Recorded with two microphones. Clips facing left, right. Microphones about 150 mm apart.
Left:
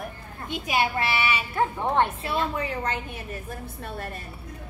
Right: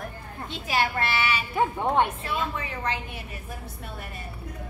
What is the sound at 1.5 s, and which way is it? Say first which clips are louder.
Speech: right 1 dB; 15° right (ahead or behind).